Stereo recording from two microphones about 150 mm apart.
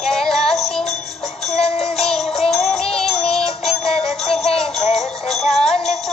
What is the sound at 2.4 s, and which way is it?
Music, 45° left (ahead or behind).